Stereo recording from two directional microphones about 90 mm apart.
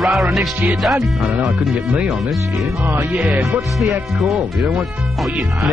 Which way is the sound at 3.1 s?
10° right (ahead or behind).